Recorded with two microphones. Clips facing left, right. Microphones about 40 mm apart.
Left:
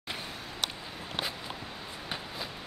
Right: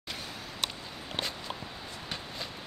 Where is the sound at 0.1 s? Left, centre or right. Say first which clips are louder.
Left 1 dB; left.